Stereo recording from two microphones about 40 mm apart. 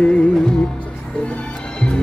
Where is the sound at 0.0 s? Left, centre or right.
Left.